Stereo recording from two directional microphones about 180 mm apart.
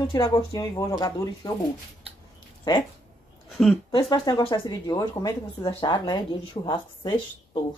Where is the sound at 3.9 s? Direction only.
25° left (ahead or behind).